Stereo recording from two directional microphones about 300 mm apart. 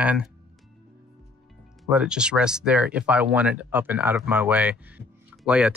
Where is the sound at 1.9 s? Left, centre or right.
Centre.